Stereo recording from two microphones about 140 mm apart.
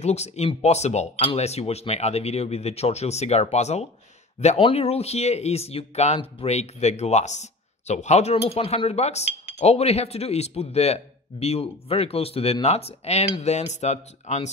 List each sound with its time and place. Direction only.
0.0 s speech: 50° left (ahead or behind)